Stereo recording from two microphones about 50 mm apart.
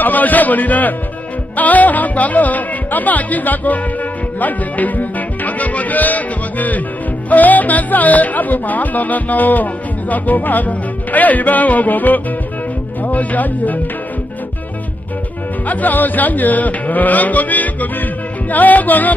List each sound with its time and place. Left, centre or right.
0.0 s speech: left
15.6 s speech: left